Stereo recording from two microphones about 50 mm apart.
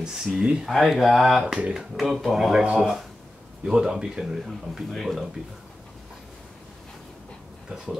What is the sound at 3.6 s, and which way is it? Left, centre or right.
Speech, centre.